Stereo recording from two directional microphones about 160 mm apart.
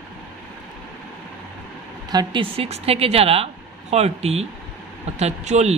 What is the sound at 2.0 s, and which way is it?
A woman's voice, 30° right (ahead or behind).